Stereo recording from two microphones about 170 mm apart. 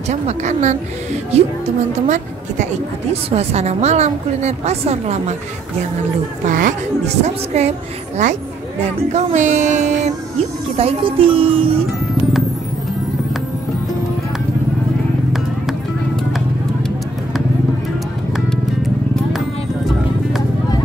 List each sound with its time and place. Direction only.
0.1 s a woman's voice: 45° right (ahead or behind)
6.4 s a woman's voice: 50° right (ahead or behind)
9.1 s speech: 45° right (ahead or behind)
10.8 s a woman's voice: 35° right (ahead or behind)